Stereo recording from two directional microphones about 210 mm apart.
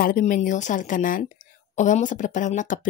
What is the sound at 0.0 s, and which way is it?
A woman's voice, 40° left (ahead or behind).